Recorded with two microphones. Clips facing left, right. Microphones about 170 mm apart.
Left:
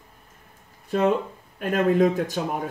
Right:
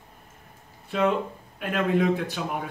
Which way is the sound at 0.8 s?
40° left (ahead or behind).